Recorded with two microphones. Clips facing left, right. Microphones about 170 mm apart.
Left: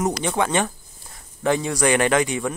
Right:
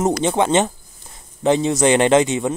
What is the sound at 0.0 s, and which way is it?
Speech, 25° right (ahead or behind).